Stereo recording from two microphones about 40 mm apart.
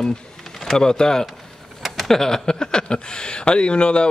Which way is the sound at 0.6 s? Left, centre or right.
Centre.